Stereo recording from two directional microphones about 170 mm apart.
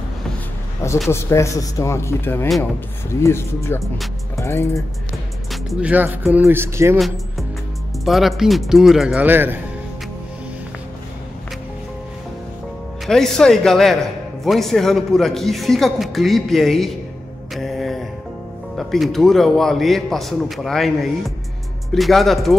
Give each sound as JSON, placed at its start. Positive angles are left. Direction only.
{"t": 1.1, "sound": "speech", "side_deg": 15}
{"t": 5.5, "sound": "speech", "side_deg": -5}
{"t": 8.0, "sound": "a man's voice", "side_deg": 0}
{"t": 13.0, "sound": "a man's voice", "side_deg": 0}
{"t": 17.6, "sound": "music", "side_deg": 0}
{"t": 18.8, "sound": "a man's voice", "side_deg": 0}